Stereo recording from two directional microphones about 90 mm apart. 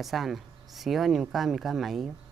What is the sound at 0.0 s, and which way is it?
Speech, centre (ahead or behind).